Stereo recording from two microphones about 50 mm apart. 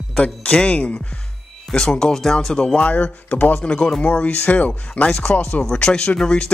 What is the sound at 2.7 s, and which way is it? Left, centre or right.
Speech, left.